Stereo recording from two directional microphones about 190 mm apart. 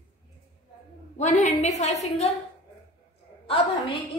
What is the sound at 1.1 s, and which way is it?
A woman's voice, 40° left (ahead or behind).